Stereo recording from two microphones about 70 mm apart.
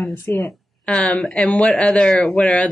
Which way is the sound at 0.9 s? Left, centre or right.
Centre.